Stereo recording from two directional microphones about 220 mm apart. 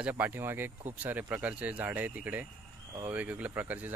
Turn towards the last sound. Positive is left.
turn(degrees=-10)  # may be behind; listen again after turning